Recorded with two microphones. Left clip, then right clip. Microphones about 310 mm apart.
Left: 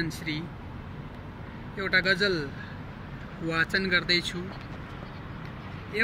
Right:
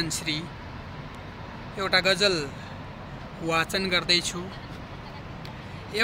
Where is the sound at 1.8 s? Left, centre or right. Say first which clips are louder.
Right 2 dB; centre.